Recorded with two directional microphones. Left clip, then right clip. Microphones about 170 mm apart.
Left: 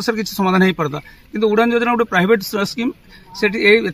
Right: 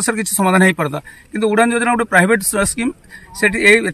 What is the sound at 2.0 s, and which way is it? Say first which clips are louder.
Speech: right 2 dB; 5° right (ahead or behind).